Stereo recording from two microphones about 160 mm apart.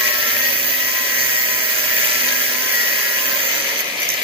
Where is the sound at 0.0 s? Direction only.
35° right (ahead or behind).